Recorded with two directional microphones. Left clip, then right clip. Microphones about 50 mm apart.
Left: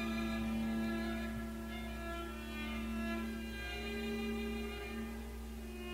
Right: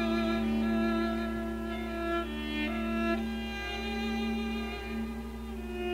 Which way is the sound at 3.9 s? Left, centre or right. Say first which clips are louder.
Right 5 dB; right.